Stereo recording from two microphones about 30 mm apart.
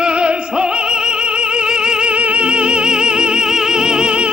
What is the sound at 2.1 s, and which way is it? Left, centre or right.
Music, right.